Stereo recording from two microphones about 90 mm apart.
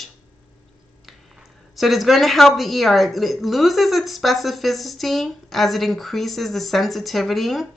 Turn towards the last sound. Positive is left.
turn(degrees=0)  # may be behind; listen again after turning